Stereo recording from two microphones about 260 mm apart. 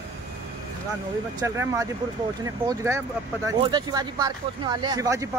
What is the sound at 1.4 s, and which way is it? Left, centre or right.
Speech, centre.